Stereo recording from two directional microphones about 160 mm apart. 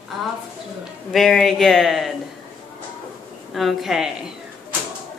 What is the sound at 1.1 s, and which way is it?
Speech, centre (ahead or behind).